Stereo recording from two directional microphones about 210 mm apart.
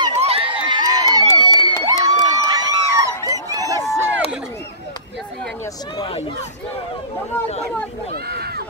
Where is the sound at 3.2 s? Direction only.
15° right (ahead or behind).